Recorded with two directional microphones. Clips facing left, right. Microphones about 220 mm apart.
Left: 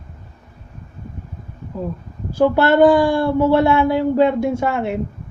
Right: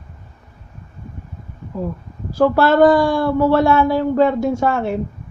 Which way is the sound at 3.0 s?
25° left (ahead or behind).